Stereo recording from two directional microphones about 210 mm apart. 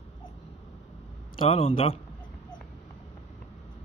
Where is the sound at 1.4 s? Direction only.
25° left (ahead or behind).